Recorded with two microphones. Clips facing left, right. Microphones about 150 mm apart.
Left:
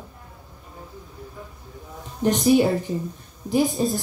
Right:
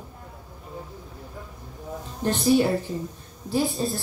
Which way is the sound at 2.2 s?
15° left (ahead or behind).